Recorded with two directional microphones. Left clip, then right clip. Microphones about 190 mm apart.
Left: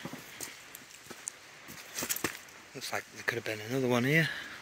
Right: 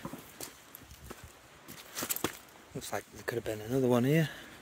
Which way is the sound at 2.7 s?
40° right (ahead or behind).